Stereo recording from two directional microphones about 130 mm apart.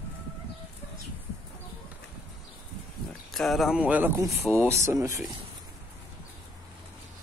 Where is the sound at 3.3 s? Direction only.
Centre (ahead or behind); by 5.2 s 25° right (ahead or behind).